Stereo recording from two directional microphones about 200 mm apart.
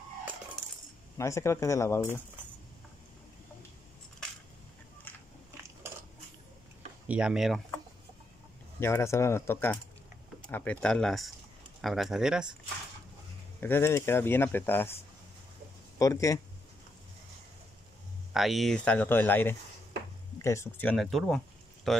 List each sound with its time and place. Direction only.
1.1 s speech: 15° left (ahead or behind)
5.1 s biting: 10° left (ahead or behind)
7.1 s speech: 5° right (ahead or behind)
8.7 s speech: 10° left (ahead or behind)
13.6 s speech: 10° left (ahead or behind)
16.0 s speech: 15° left (ahead or behind)
18.3 s speech: centre (ahead or behind)